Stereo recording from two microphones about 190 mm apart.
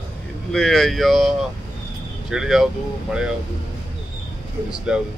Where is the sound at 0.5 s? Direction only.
Centre (ahead or behind).